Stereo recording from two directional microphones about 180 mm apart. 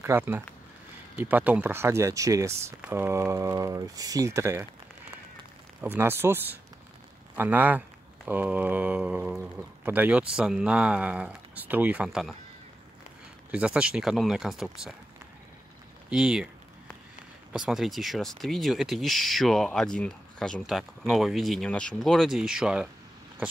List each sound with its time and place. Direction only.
0.0 s speech: 15° right (ahead or behind)
5.8 s speech: 10° right (ahead or behind)
13.5 s speech: 5° right (ahead or behind)
16.1 s speech: 5° right (ahead or behind)
17.5 s speech: centre (ahead or behind)